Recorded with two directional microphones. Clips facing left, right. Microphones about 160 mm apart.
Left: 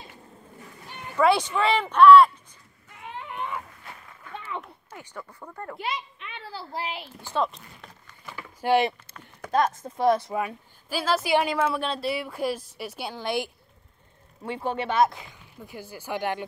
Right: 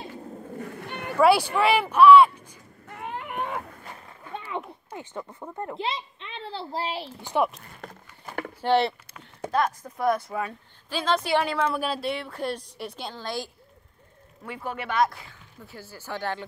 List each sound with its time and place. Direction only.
0.6 s a sound: 65° right (ahead or behind)
1.6 s speech: 10° right (ahead or behind)
2.9 s a sound: 55° right (ahead or behind)
4.2 s a child's voice: 20° right (ahead or behind)
7.2 s speech: 15° right (ahead or behind)
7.8 s a sound: 45° right (ahead or behind)
8.5 s speech: 10° left (ahead or behind)
9.5 s speech: 25° left (ahead or behind)
10.3 s speech: 10° left (ahead or behind)
14.4 s speech: 30° left (ahead or behind)